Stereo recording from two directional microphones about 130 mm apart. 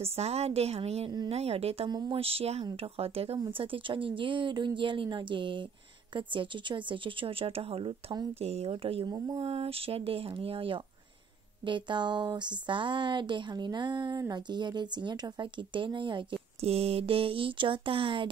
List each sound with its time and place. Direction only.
0.0 s speech: 50° right (ahead or behind)
1.9 s speech: 35° right (ahead or behind)
2.1 s speech: 50° right (ahead or behind)
3.3 s speech: 40° right (ahead or behind)